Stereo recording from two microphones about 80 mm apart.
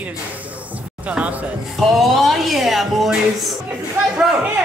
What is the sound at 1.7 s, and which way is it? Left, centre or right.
Music, centre.